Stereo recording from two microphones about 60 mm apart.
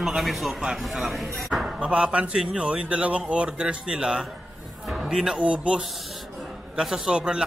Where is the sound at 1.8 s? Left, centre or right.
Centre.